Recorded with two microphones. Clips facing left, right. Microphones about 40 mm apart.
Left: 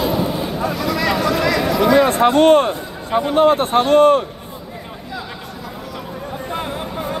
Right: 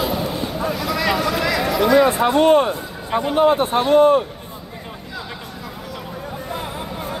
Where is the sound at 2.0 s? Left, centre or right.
Left.